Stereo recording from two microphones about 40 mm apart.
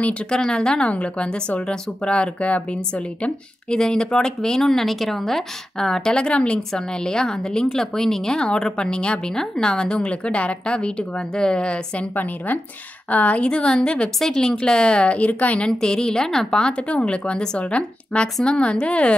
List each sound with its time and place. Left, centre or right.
0.3 s a woman's voice: left
3.7 s speech: centre
8.9 s a woman's voice: left
9.3 s a woman's voice: centre
13.1 s a woman's voice: left
13.4 s a woman's voice: left
15.8 s a woman's voice: centre
16.9 s a woman's voice: left